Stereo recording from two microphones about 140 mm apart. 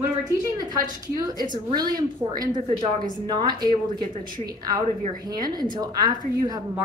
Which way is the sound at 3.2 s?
30° right (ahead or behind).